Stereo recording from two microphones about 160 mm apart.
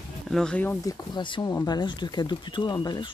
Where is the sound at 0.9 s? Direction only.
30° left (ahead or behind).